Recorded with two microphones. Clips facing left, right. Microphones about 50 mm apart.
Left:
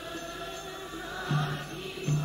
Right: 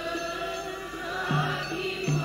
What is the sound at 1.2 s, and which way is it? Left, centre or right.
Music, right.